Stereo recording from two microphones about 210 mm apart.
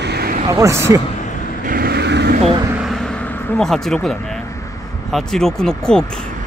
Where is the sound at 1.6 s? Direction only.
45° right (ahead or behind).